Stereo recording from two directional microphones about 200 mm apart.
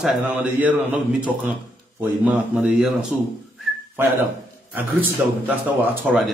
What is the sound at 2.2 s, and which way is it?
Speech, 5° right (ahead or behind).